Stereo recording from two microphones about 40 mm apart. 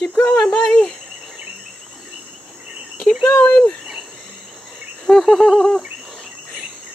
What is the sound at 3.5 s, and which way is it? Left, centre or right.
Speech, left.